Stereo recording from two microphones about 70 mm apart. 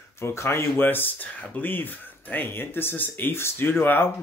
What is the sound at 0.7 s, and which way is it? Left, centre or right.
Speech, left.